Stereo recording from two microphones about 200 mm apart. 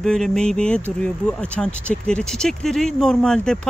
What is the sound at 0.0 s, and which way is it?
Speech, 5° left (ahead or behind).